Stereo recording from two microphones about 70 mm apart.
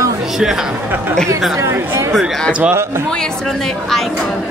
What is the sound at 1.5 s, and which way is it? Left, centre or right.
Speech, right.